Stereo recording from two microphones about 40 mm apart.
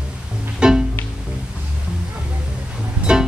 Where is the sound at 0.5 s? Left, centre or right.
Centre.